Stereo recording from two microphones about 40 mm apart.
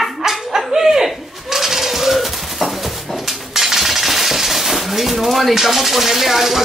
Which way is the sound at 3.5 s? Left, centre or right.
Centre.